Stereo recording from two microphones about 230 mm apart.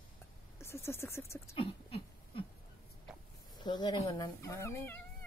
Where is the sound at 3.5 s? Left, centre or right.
Centre.